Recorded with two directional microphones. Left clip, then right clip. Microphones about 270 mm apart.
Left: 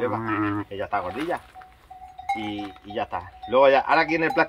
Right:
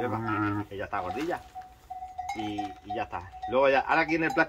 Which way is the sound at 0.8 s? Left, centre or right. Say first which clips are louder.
Left 5 dB; left.